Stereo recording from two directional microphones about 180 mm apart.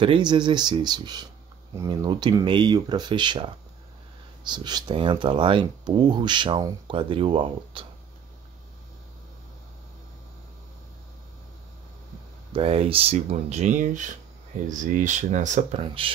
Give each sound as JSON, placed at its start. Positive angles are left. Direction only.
{"t": 0.0, "sound": "speech", "side_deg": -25}
{"t": 12.5, "sound": "speech", "side_deg": -30}